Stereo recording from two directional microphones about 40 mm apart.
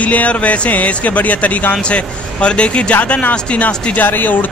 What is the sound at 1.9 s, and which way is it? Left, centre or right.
Speech, left.